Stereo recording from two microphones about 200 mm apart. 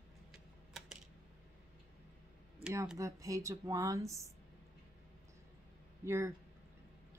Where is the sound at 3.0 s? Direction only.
15° right (ahead or behind).